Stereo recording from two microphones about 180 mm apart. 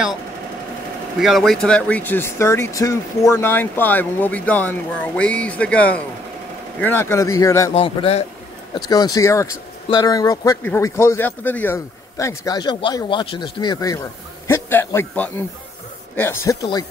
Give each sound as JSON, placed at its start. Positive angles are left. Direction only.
{"t": 1.2, "sound": "speech", "side_deg": 0}
{"t": 7.7, "sound": "a man's voice", "side_deg": 30}
{"t": 8.7, "sound": "speech", "side_deg": 20}